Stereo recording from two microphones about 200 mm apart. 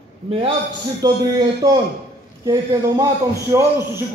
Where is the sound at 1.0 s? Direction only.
20° right (ahead or behind).